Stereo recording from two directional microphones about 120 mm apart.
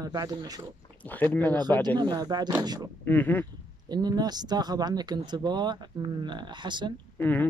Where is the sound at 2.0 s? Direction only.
35° right (ahead or behind).